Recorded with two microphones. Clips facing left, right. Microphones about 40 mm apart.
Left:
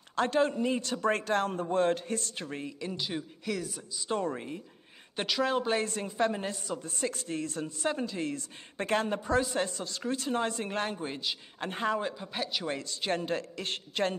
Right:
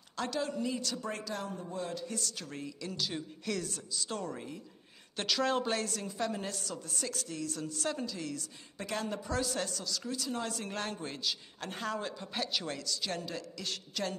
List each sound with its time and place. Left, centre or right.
0.1 s a man's voice: left
3.4 s a woman's voice: centre; by 4.6 s left
5.1 s speech: centre
5.8 s a woman's voice: left; by 12.6 s centre
12.6 s a man's voice: left